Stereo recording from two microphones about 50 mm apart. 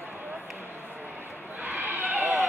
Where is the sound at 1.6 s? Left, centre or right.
Right.